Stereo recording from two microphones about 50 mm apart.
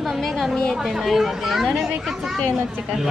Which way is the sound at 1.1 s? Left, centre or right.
Centre.